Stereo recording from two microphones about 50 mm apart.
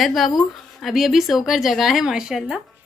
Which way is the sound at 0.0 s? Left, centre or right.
Centre.